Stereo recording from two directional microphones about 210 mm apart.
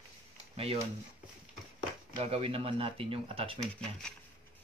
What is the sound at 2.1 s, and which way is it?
Speech, 25° right (ahead or behind).